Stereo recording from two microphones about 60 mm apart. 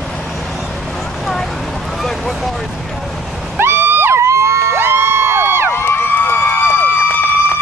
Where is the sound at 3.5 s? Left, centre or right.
Right.